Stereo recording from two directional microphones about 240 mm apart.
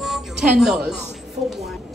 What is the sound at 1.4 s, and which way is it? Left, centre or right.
Speech, right.